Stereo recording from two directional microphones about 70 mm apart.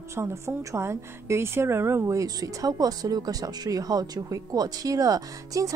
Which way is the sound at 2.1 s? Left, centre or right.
Right.